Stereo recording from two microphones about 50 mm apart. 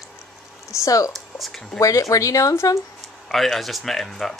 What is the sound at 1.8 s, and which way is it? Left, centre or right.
Speech, left.